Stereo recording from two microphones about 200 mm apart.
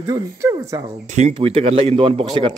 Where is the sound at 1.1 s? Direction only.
30° right (ahead or behind).